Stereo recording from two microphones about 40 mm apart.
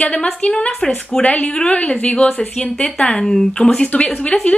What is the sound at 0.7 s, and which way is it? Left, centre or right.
Speech, centre.